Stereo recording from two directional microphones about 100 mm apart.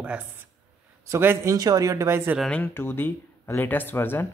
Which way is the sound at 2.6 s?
20° left (ahead or behind).